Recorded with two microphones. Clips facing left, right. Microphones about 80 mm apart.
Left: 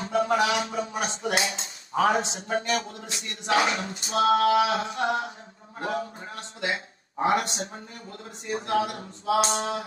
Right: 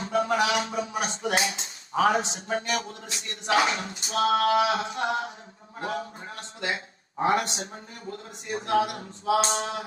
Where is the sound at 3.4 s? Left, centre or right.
Left.